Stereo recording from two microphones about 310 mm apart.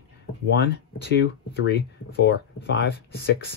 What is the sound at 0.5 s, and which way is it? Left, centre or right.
Speech, left.